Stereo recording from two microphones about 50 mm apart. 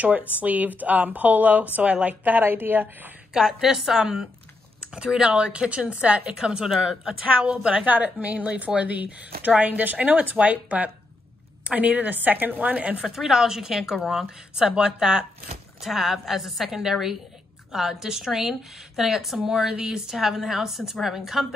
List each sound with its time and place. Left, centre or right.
0.4 s a woman's voice: right
3.3 s a woman's voice: centre
7.1 s a woman's voice: centre
7.8 s a woman's voice: right
13.0 s a woman's voice: centre
15.8 s a woman's voice: centre